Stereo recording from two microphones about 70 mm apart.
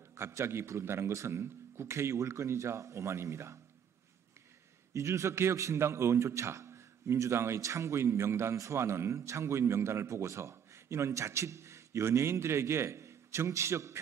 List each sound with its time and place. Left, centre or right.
0.1 s a man's voice: right
4.9 s a man's voice: right